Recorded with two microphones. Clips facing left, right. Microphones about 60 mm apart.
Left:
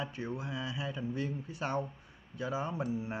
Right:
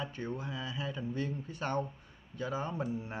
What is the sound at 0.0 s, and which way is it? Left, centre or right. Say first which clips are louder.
Speech: even; centre.